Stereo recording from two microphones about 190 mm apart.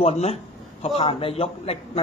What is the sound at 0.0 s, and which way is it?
A man's voice, 35° left (ahead or behind).